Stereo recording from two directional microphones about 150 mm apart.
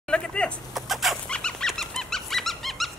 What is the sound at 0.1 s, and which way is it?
Chicken, 5° left (ahead or behind).